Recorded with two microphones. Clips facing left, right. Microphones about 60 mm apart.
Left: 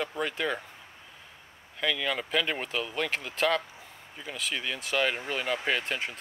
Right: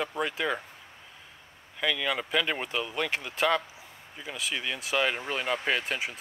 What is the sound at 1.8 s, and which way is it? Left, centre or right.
Speech, centre.